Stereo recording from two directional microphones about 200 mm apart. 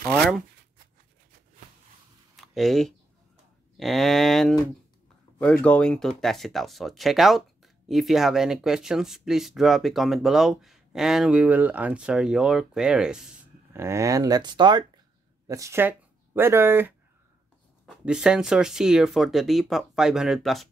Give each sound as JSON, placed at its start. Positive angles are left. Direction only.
{"t": 2.3, "sound": "a sound", "side_deg": 0}
{"t": 3.7, "sound": "speech", "side_deg": 0}
{"t": 13.7, "sound": "speech", "side_deg": -15}
{"t": 18.0, "sound": "speech", "side_deg": -5}